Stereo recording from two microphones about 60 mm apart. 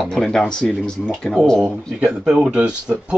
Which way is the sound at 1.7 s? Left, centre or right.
Centre.